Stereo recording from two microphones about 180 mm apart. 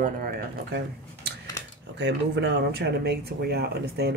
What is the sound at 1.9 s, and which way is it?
Speech, 70° right (ahead or behind).